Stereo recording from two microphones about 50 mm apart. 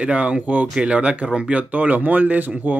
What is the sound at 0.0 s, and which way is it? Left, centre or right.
Speech, right.